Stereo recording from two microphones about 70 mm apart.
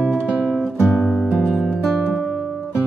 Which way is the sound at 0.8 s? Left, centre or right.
Centre.